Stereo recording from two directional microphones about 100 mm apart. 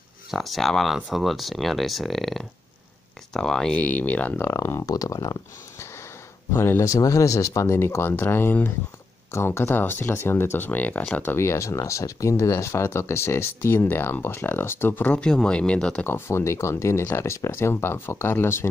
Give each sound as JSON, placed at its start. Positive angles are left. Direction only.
{"t": 0.3, "sound": "speech", "side_deg": 0}
{"t": 4.5, "sound": "speech", "side_deg": 30}
{"t": 6.5, "sound": "speech", "side_deg": 25}
{"t": 16.1, "sound": "speech", "side_deg": 25}